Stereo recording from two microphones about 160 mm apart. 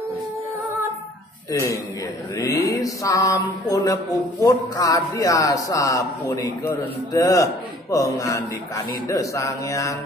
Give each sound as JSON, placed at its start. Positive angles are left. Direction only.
{"t": 1.5, "sound": "speech", "side_deg": 20}